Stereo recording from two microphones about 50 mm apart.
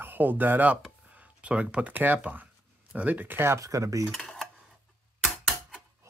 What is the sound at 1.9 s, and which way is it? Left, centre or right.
Speech, right.